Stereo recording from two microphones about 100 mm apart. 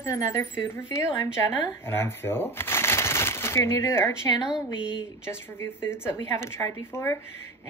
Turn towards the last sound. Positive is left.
turn(degrees=25)  # may be behind; listen again after turning